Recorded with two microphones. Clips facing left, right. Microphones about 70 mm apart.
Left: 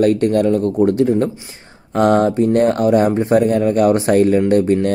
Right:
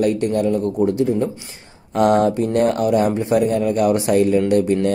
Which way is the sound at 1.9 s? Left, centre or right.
Left.